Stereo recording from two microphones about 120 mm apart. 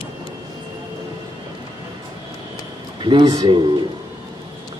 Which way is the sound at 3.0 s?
40° right (ahead or behind).